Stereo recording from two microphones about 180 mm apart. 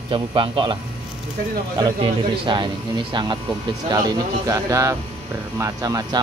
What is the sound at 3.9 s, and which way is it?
Speech, 20° right (ahead or behind).